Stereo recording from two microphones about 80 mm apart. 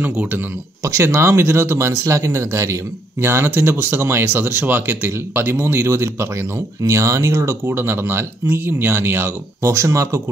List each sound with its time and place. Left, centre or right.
0.0 s speech: right
0.8 s speech: right